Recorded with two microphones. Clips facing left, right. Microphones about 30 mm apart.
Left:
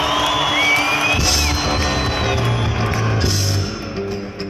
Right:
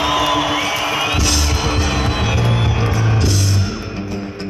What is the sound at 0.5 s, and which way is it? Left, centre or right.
Music, left.